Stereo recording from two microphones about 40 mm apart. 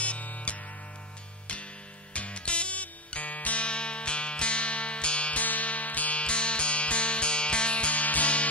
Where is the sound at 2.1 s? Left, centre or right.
Left.